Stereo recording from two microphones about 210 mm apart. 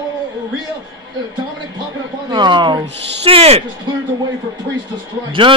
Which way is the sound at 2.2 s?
20° right (ahead or behind).